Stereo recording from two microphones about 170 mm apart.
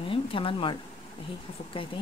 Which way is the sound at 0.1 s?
30° left (ahead or behind).